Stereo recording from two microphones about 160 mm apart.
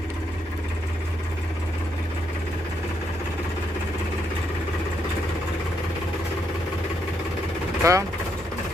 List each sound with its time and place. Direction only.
7.8 s speech: 20° right (ahead or behind)